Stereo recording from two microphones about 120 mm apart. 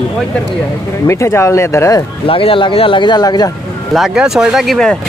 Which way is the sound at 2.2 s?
50° left (ahead or behind).